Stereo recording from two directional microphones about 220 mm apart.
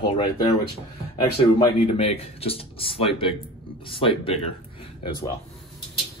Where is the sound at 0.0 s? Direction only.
25° left (ahead or behind).